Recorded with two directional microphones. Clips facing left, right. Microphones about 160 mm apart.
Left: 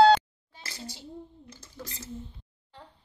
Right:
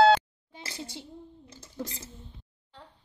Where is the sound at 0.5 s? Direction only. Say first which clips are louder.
Right 3 dB; 20° right (ahead or behind).